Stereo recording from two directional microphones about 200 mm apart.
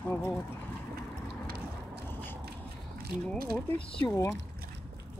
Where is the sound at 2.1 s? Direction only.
10° left (ahead or behind).